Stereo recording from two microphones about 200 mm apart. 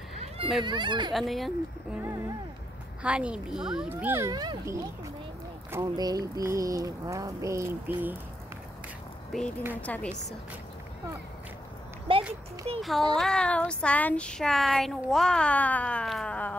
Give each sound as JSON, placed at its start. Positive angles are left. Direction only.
{"t": 0.2, "sound": "speech", "side_deg": -25}
{"t": 1.1, "sound": "speech", "side_deg": 0}
{"t": 2.0, "sound": "speech", "side_deg": -15}
{"t": 9.3, "sound": "a woman's voice", "side_deg": 0}
{"t": 12.1, "sound": "a sound", "side_deg": -25}
{"t": 12.7, "sound": "child singing", "side_deg": -30}
{"t": 13.1, "sound": "speech", "side_deg": 5}